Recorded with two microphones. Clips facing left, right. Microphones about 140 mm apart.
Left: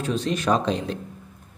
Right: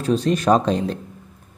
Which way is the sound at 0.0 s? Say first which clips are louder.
Right 6 dB; 40° right (ahead or behind).